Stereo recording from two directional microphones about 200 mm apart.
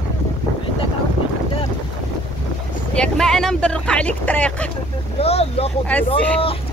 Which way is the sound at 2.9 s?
5° left (ahead or behind).